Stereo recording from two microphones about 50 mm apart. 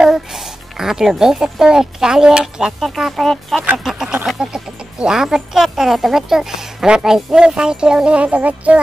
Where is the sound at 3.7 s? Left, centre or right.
Centre.